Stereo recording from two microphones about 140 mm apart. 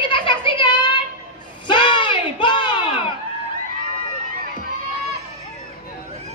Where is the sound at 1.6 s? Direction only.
35° left (ahead or behind).